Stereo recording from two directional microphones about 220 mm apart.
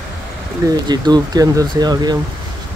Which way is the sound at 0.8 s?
20° right (ahead or behind).